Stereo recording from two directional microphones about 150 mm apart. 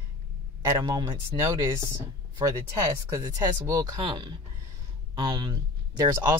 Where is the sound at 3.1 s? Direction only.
25° right (ahead or behind).